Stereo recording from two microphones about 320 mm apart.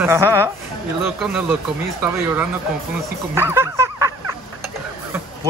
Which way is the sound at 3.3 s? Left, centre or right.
Centre.